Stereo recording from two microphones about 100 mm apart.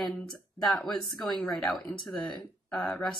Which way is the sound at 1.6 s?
15° left (ahead or behind).